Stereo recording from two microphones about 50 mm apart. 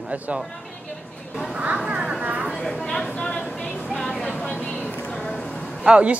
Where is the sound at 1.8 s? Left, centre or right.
Centre.